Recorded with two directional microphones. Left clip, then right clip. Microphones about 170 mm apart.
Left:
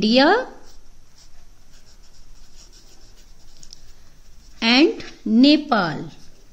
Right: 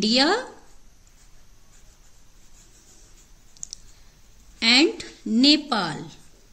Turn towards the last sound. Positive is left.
turn(degrees=40)  # may be behind; listen again after turning